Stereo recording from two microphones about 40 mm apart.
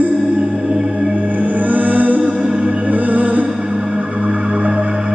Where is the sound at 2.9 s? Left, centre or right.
Right.